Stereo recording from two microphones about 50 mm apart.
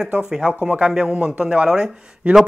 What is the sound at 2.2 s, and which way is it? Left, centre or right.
Speech, right.